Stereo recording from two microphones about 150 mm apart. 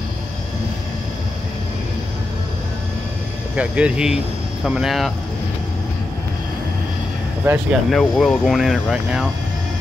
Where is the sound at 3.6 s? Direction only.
10° right (ahead or behind).